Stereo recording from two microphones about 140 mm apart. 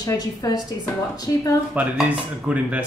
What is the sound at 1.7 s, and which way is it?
Dishes, 10° right (ahead or behind).